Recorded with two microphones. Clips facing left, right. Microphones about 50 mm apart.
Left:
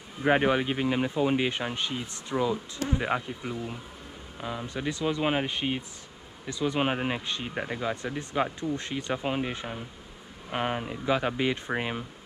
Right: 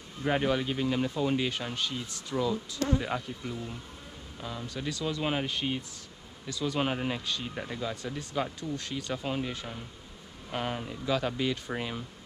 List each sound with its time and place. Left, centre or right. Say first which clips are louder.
0.2 s speech: left 4 dB; left